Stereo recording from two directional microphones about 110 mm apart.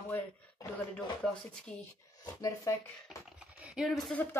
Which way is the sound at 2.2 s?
30° left (ahead or behind).